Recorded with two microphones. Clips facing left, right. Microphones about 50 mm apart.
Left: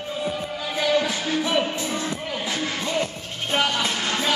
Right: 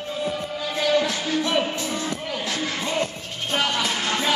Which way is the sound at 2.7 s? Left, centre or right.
Centre.